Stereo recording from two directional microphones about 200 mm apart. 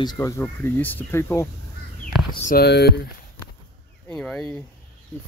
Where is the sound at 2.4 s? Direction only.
50° left (ahead or behind).